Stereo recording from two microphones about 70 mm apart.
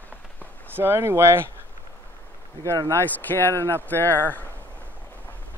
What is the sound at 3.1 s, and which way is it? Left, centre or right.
Speech, left.